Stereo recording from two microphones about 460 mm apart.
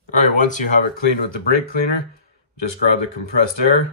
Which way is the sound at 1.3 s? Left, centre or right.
Left.